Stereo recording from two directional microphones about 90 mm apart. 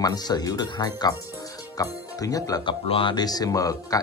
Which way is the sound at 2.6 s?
70° left (ahead or behind).